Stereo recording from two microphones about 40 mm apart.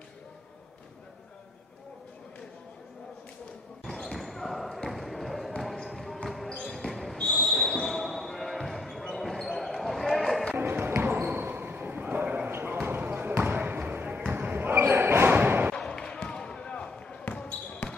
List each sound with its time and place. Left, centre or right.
3.8 s basketball bounce: centre
4.8 s a sound: centre
5.6 s basketball bounce: centre
10.5 s basketball bounce: right
12.4 s basketball bounce: right
12.8 s basketball bounce: right
14.5 s basketball bounce: right
15.9 s basketball bounce: centre